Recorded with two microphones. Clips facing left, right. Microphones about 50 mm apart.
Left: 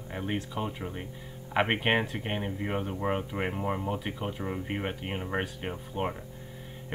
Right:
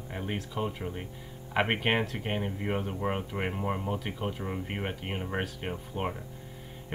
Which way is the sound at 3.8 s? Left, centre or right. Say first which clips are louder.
Left 1 dB; centre.